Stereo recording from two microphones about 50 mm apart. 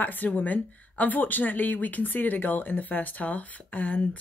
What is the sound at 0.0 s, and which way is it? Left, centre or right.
A woman's voice, left.